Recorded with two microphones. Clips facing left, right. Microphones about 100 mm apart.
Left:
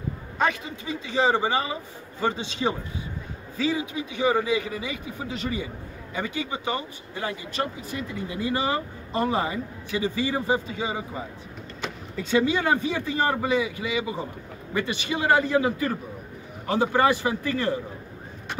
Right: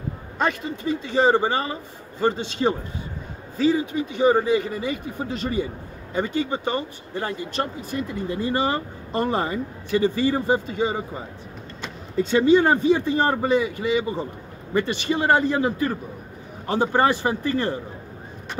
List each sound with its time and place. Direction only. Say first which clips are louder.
0.7 s a man's voice: right 7 dB; 45° right (ahead or behind)
3.5 s a man's voice: right 6 dB; 45° right (ahead or behind)
12.2 s speech: right 6 dB; 35° right (ahead or behind)